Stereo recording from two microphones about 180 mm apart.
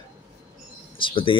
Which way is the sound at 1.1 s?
30° left (ahead or behind).